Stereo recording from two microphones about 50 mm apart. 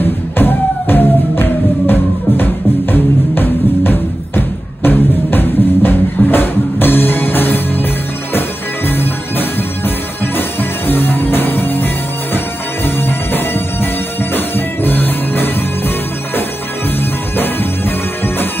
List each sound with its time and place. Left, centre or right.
0.0 s music: left
12.8 s music: left
17.4 s music: left